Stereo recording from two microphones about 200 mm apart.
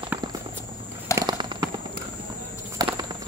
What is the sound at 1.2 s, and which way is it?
Clip-clop, 20° right (ahead or behind).